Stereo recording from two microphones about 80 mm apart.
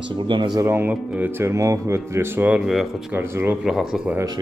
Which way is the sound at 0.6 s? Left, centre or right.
Right.